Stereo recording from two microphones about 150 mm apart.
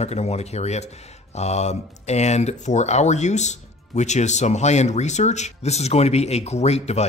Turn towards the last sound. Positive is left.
turn(degrees=45)  # may be behind; listen again after turning